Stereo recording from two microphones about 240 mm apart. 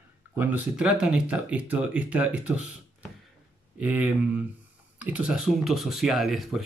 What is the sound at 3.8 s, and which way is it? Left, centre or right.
Speech, centre.